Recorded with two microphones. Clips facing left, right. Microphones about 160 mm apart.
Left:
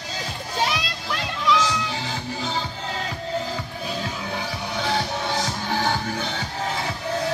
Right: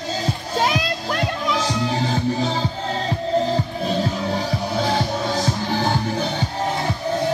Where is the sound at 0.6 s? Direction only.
50° right (ahead or behind).